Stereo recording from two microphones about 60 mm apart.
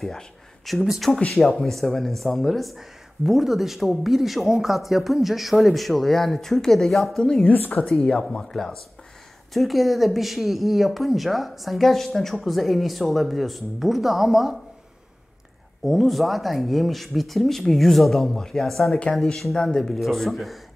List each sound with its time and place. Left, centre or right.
0.7 s speech: centre
7.4 s a woman's voice: left
7.9 s speech: centre
15.8 s speech: centre